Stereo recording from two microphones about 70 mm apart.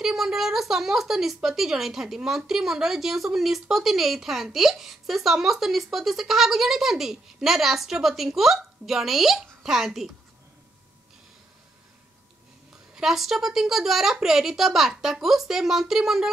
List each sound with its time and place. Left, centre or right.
0.0 s a woman's voice: centre
12.9 s a woman's voice: centre